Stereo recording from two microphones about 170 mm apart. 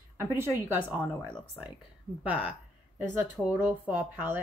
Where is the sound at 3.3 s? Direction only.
10° right (ahead or behind).